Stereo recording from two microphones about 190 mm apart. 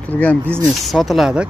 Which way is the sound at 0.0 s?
10° left (ahead or behind).